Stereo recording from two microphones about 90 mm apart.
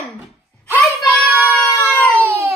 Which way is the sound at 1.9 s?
15° left (ahead or behind).